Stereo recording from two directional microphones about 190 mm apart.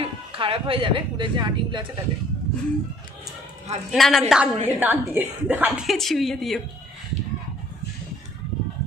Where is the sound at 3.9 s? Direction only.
Centre (ahead or behind).